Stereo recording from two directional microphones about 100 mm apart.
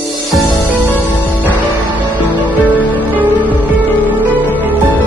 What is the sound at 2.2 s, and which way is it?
Music, 15° right (ahead or behind).